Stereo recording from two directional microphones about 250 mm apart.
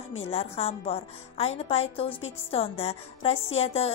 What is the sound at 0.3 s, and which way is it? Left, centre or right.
Speech, left.